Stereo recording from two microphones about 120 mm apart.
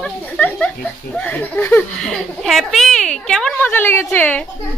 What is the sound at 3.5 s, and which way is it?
Speech, 15° left (ahead or behind).